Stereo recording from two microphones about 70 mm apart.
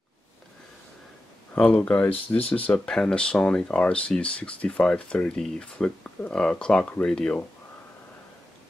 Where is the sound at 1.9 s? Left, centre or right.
Left.